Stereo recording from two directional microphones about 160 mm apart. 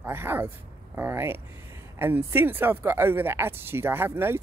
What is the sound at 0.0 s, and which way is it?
Speech, 15° right (ahead or behind).